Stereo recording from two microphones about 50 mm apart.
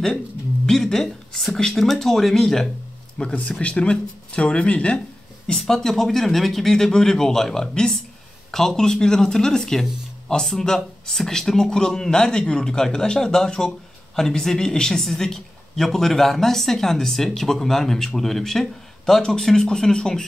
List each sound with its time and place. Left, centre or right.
0.7 s speech: centre
3.2 s speech: left
5.6 s speech: centre